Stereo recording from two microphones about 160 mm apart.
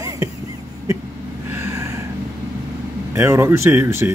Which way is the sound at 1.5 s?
20° right (ahead or behind).